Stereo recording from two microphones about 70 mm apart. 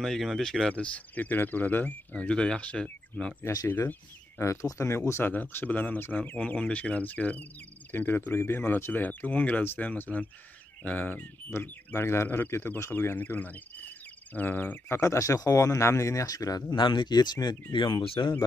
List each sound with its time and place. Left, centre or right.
0.0 s speech: centre
3.6 s speech: left
4.4 s speech: left
5.2 s speech: left
7.9 s cricket: left
8.3 s speech: left
12.9 s speech: left
14.9 s speech: left
16.8 s speech: left